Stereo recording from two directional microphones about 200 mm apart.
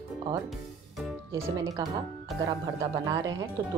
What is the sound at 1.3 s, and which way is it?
Speech, 15° right (ahead or behind).